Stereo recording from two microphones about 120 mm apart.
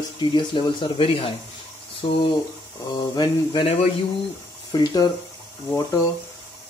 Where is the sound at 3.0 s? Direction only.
35° left (ahead or behind).